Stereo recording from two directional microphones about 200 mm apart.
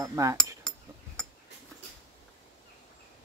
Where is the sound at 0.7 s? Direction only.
5° left (ahead or behind).